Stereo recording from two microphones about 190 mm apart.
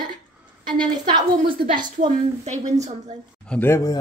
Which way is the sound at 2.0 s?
40° right (ahead or behind).